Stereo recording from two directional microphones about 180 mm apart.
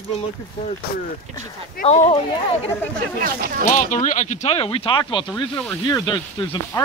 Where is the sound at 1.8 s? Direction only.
35° left (ahead or behind).